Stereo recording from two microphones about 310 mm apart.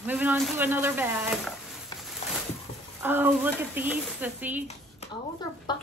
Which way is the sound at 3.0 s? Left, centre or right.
Centre.